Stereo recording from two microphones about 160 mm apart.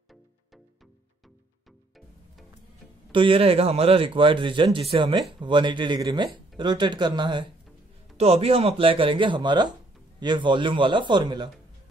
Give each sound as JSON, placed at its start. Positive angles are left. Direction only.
{"t": 3.1, "sound": "speech", "side_deg": -30}
{"t": 8.2, "sound": "speech", "side_deg": -40}